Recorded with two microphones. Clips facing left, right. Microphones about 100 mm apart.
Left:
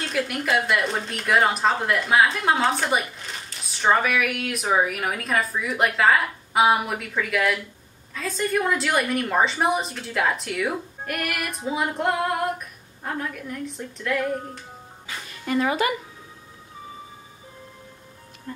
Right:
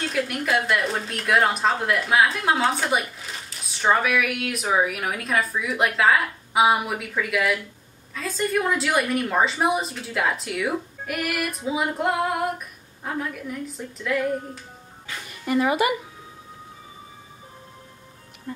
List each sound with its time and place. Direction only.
0.0 s a woman's voice: centre (ahead or behind)